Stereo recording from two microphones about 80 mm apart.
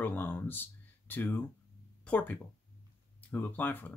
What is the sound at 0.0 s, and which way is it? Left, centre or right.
Speech, left.